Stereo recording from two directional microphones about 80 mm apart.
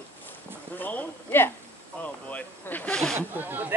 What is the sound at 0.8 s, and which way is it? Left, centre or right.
Speech, centre.